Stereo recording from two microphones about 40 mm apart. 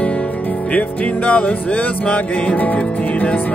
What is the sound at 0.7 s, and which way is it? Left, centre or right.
Music, left.